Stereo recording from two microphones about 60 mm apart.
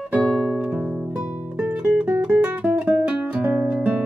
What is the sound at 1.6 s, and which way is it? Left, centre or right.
Music, centre.